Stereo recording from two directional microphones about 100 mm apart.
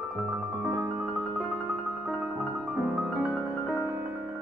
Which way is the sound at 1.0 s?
5° left (ahead or behind).